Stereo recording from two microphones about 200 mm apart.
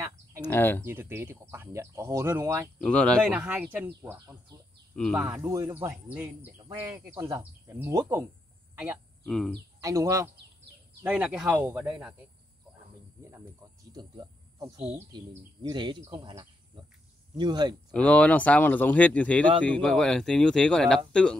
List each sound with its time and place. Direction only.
0.4 s speech: 10° left (ahead or behind)
0.8 s speech: 10° right (ahead or behind)
2.8 s speech: 5° left (ahead or behind)
3.3 s speech: 10° right (ahead or behind)
9.2 s speech: centre (ahead or behind)
9.8 s speech: 15° right (ahead or behind)
13.9 s a sound: 20° right (ahead or behind)
15.1 s speech: 20° right (ahead or behind)
17.9 s speech: 5° left (ahead or behind)